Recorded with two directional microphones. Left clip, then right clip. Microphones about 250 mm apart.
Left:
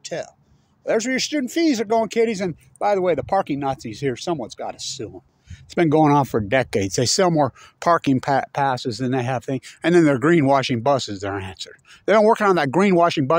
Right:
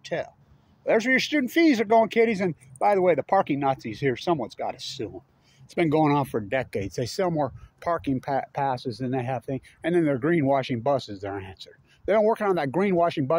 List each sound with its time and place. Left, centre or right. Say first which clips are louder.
0.1 s speech: even; centre
5.8 s speech: left 6 dB; left